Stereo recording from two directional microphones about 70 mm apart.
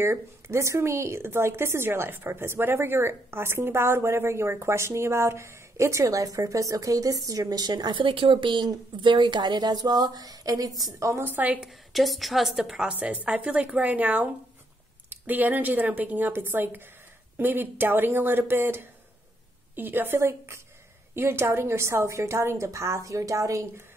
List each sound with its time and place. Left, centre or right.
0.0 s a woman's voice: right
8.5 s a woman's voice: right
11.1 s a woman's voice: right
11.9 s a woman's voice: centre
12.9 s a woman's voice: right